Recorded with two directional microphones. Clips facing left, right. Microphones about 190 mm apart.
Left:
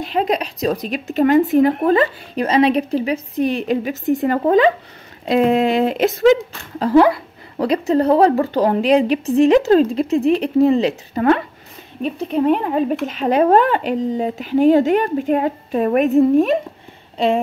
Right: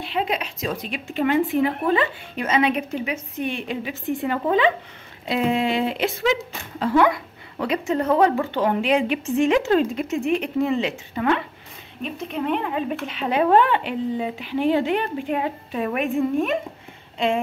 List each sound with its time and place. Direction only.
0.0 s speech: 40° left (ahead or behind)